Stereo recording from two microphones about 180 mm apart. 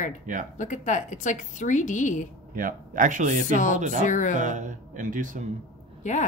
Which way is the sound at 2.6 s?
50° right (ahead or behind).